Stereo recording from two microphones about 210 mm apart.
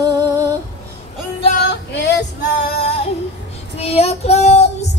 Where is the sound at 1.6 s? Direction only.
55° left (ahead or behind).